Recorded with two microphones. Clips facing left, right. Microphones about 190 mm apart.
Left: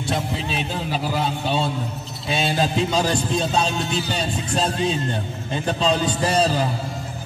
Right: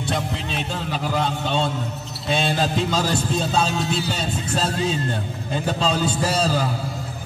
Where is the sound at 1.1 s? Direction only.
5° left (ahead or behind).